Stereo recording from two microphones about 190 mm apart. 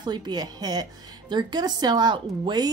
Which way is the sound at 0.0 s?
20° right (ahead or behind).